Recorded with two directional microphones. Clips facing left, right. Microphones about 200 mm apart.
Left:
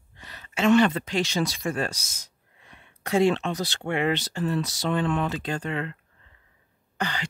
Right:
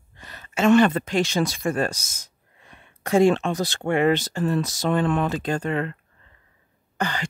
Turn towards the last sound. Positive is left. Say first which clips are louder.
# right 3 dB
turn(degrees=-45)  # may be behind; listen again after turning